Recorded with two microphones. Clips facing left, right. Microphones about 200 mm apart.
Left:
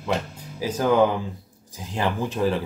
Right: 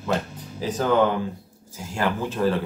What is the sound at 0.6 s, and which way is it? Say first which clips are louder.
Speech: left 1 dB; 10° left (ahead or behind).